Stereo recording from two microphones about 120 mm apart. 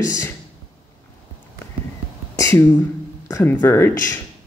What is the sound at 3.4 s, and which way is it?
Speech, 20° left (ahead or behind).